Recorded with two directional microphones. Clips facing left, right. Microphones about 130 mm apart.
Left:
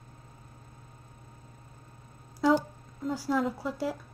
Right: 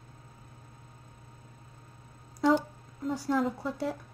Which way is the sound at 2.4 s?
5° left (ahead or behind).